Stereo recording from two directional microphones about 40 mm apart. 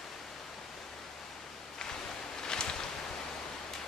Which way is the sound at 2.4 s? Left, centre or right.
Centre.